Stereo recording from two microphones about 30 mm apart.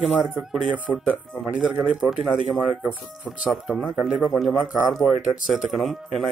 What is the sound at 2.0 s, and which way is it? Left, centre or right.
Speech, centre.